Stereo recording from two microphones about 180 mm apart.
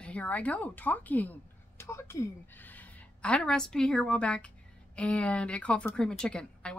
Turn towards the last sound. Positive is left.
turn(degrees=5)  # may be behind; listen again after turning